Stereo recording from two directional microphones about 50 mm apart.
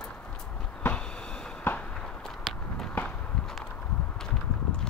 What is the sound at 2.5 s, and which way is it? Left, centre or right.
Walk, centre.